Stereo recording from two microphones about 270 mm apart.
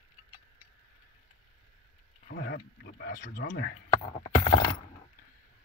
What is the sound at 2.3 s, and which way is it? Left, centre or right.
Speech, left.